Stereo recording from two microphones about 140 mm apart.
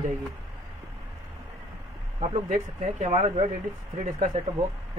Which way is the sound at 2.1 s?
50° right (ahead or behind).